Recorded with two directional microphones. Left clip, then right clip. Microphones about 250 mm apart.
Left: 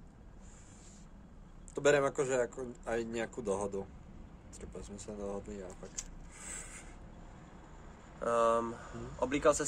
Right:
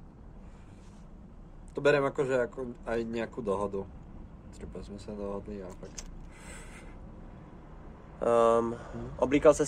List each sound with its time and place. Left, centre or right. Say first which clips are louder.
1.8 s speech: right 3 dB; centre
8.2 s speech: right 6 dB; right